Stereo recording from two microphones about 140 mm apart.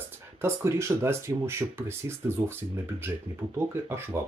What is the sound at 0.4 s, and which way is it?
Speech, 20° right (ahead or behind).